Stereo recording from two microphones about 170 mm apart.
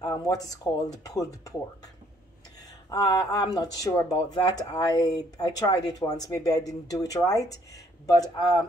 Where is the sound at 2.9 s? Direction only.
20° left (ahead or behind).